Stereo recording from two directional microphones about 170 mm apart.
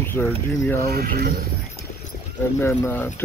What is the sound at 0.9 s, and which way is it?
Speech, 65° right (ahead or behind).